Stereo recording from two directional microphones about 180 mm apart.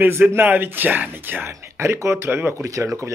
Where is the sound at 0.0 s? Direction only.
10° right (ahead or behind).